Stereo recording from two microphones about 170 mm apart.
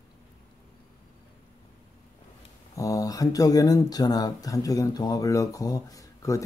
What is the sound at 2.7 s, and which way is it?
Speech, 20° left (ahead or behind).